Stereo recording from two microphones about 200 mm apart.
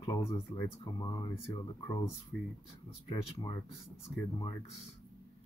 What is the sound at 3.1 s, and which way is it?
Speech, 20° left (ahead or behind).